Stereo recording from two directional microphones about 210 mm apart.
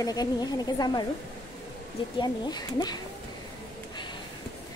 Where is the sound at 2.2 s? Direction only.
20° left (ahead or behind).